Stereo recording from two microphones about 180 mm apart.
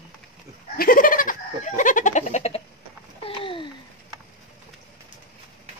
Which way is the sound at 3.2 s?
30° left (ahead or behind).